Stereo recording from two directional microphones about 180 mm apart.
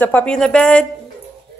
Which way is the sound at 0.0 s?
10° left (ahead or behind).